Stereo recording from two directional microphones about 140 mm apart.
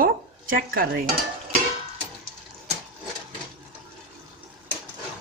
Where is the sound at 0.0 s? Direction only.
90° right.